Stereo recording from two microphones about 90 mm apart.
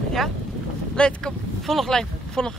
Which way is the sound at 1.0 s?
10° left (ahead or behind).